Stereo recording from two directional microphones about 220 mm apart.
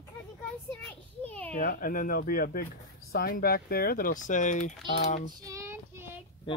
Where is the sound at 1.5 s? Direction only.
40° left (ahead or behind).